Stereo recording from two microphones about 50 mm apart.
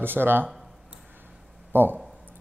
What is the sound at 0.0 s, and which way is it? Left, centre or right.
Speech, right.